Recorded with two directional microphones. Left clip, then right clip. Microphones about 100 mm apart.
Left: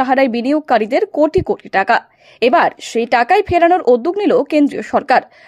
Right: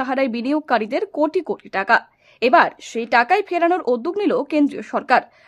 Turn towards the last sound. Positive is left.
turn(degrees=35)  # may be behind; listen again after turning